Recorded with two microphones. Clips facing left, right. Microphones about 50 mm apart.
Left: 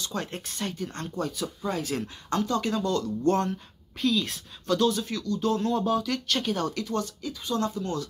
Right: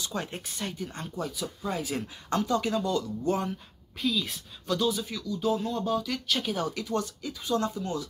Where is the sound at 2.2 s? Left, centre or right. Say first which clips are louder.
Right 1 dB; right.